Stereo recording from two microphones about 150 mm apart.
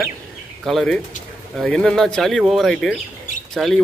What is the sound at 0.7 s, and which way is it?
A man's voice, 5° left (ahead or behind).